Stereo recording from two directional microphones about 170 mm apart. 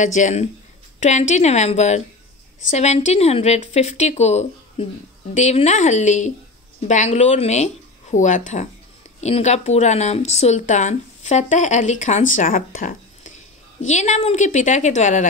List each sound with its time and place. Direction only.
0.0 s speech: 45° left (ahead or behind)